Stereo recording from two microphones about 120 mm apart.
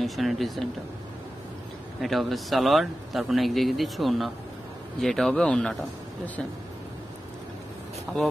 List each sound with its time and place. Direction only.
0.0 s speech: centre (ahead or behind)
2.0 s a man's voice: centre (ahead or behind)
8.1 s speech: centre (ahead or behind)